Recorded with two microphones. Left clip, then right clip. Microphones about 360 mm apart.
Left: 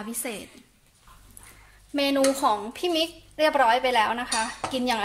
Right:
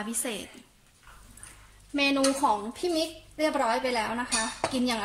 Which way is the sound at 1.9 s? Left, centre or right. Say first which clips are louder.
Left 2 dB; left.